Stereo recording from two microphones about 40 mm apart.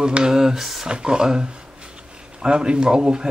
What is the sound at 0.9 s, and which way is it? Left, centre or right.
Speech, right.